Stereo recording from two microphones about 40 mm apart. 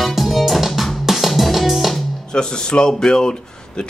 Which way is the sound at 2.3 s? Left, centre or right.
Centre.